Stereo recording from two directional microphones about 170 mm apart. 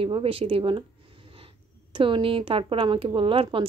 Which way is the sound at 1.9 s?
30° right (ahead or behind).